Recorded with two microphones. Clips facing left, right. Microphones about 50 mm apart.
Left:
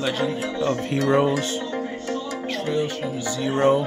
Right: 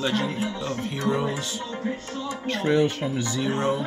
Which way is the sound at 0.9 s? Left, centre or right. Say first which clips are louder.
Left 6 dB; left.